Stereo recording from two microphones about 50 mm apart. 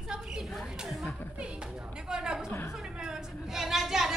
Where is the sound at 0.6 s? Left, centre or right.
Centre.